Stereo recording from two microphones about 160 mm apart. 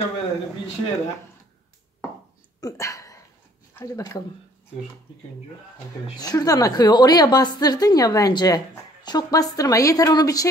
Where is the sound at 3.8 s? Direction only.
20° left (ahead or behind).